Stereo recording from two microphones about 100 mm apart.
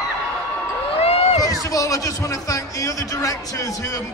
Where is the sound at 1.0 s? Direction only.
90° left.